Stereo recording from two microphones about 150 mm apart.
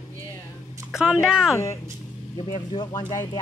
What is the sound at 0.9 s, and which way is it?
Speech, 5° right (ahead or behind).